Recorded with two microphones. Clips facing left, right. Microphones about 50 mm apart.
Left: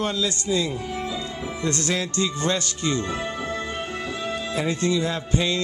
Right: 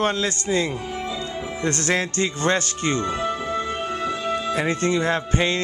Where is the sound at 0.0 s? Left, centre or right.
Right.